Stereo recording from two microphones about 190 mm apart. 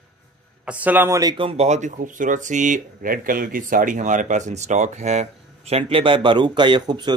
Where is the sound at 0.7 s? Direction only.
10° right (ahead or behind).